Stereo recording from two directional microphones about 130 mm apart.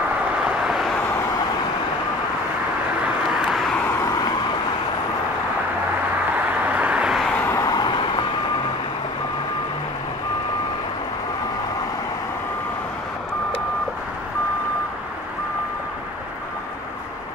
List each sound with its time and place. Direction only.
0.7 s vehicle: centre (ahead or behind)
3.3 s vehicle: 5° right (ahead or behind)
4.0 s vehicle: 30° left (ahead or behind)
6.3 s vehicle: 10° right (ahead or behind)
7.4 s vehicle: 30° left (ahead or behind)